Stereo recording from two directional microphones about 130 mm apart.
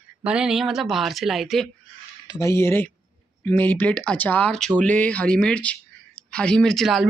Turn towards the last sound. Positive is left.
turn(degrees=0)  # may be behind; listen again after turning